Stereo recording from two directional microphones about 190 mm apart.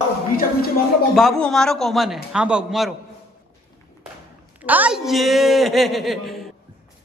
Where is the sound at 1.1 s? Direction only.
Centre (ahead or behind).